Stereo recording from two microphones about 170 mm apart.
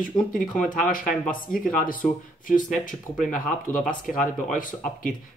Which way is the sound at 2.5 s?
50° left (ahead or behind).